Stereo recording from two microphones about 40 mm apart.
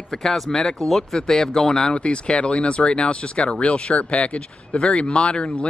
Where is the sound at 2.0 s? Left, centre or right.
Left.